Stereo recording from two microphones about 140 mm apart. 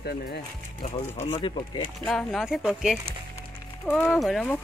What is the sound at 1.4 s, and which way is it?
Speech, 35° left (ahead or behind).